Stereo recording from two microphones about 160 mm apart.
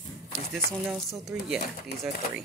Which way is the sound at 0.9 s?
Centre (ahead or behind).